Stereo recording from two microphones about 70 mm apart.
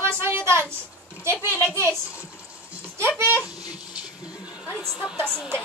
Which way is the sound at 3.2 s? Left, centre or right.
Right.